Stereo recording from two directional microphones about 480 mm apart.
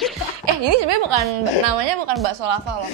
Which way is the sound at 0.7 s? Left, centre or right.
Right.